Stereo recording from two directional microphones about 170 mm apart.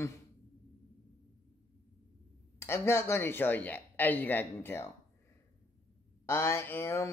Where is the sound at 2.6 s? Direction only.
15° left (ahead or behind).